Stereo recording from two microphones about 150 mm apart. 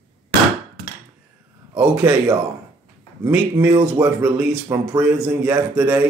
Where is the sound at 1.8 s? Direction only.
10° right (ahead or behind).